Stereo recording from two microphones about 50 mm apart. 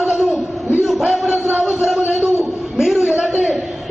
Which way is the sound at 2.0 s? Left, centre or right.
Right.